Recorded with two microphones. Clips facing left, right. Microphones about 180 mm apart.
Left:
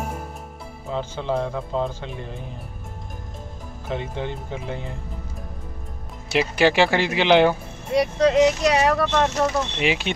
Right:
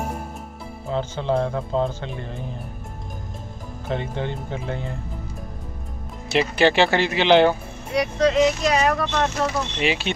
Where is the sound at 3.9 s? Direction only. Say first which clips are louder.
Right 1 dB; 10° left (ahead or behind).